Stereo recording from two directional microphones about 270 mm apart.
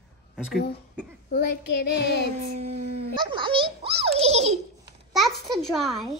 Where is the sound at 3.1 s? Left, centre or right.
Centre.